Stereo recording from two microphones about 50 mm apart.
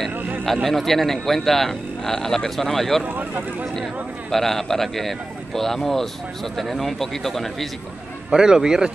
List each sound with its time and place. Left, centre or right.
0.7 s speech: centre
3.0 s speech: right
4.3 s speech: centre
8.3 s a man's voice: centre